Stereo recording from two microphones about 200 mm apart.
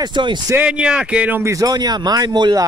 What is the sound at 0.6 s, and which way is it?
Speech, 5° right (ahead or behind).